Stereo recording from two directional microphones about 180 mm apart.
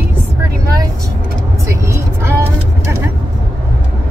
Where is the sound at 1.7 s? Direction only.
15° right (ahead or behind).